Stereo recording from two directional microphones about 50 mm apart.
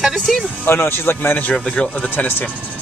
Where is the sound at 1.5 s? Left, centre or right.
Left.